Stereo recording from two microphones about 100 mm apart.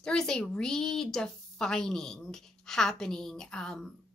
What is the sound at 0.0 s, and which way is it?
A woman's voice, 5° left (ahead or behind).